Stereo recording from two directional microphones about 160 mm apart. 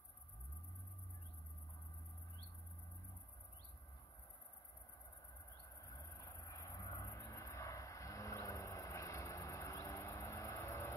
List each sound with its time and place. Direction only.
5.8 s vehicle: 20° left (ahead or behind)